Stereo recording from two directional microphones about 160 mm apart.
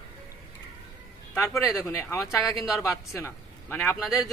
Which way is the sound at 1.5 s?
20° left (ahead or behind).